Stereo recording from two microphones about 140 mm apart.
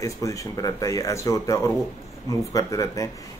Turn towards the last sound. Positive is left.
turn(degrees=25)  # may be behind; listen again after turning